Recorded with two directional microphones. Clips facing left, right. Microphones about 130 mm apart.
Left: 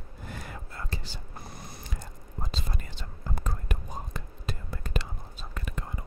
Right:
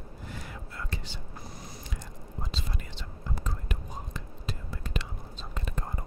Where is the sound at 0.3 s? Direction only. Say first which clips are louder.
Left 2 dB; 50° left (ahead or behind).